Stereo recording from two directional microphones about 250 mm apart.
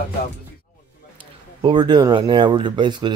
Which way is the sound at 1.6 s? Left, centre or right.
Centre.